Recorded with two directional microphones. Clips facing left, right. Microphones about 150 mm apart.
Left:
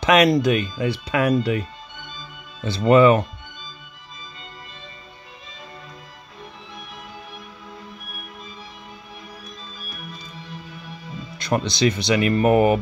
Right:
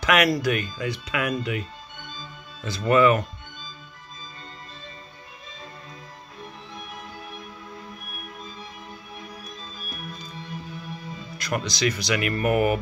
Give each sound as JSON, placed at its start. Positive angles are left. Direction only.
{"t": 0.0, "sound": "speech", "side_deg": 25}
{"t": 2.6, "sound": "speech", "side_deg": 30}
{"t": 11.3, "sound": "speech", "side_deg": 25}